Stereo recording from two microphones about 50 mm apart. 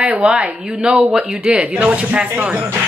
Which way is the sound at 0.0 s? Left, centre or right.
Right.